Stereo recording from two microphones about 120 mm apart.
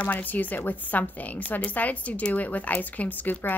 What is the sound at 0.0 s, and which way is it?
A woman's voice, 15° left (ahead or behind).